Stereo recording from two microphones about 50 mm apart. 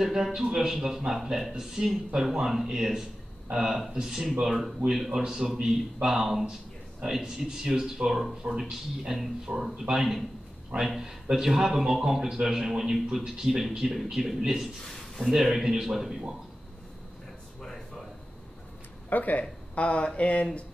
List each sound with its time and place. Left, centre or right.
0.0 s a man's voice: centre
17.6 s a sound: centre
19.0 s speech: left